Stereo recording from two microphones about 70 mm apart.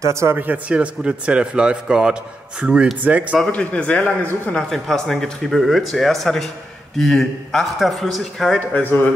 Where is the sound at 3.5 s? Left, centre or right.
Centre.